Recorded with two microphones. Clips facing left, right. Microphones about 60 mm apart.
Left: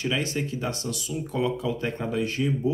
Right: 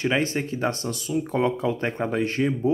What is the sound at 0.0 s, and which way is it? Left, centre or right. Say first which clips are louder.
Speech: right 4 dB; right.